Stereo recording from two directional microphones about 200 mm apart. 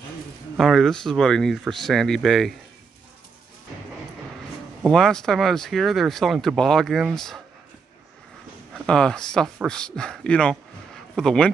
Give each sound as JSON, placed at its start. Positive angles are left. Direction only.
{"t": 0.6, "sound": "speech", "side_deg": 0}
{"t": 4.8, "sound": "speech", "side_deg": 0}
{"t": 8.7, "sound": "speech", "side_deg": 5}